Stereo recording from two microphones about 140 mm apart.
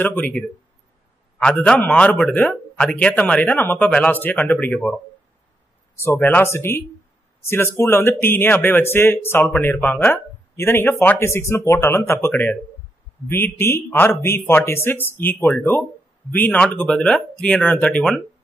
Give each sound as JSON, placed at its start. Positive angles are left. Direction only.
{"t": 0.0, "sound": "speech", "side_deg": 15}
{"t": 1.4, "sound": "speech", "side_deg": 5}
{"t": 13.3, "sound": "speech", "side_deg": 15}